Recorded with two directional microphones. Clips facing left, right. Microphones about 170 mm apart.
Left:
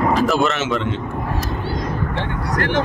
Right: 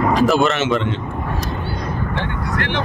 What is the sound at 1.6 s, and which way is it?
Vehicle, 90° left.